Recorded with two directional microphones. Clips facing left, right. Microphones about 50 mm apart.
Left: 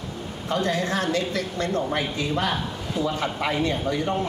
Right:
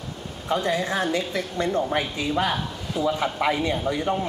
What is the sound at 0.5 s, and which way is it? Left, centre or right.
A man's voice, centre.